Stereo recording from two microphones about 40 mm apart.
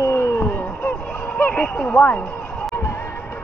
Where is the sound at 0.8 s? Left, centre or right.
Left.